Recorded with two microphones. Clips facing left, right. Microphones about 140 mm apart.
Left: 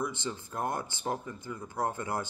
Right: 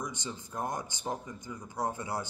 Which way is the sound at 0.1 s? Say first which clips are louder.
Left 3 dB; 15° right (ahead or behind).